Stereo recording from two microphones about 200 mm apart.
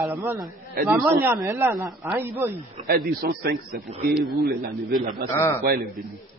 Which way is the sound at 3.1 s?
50° right (ahead or behind).